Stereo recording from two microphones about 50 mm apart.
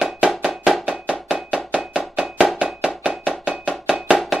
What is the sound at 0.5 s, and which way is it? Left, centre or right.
Music, centre.